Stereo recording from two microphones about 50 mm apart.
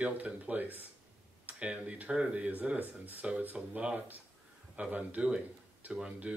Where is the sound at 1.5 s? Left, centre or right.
Right.